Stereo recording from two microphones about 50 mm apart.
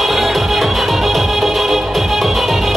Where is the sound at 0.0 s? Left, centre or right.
Centre.